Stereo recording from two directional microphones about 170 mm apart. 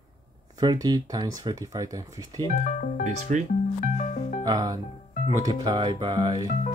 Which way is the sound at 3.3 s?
45° right (ahead or behind).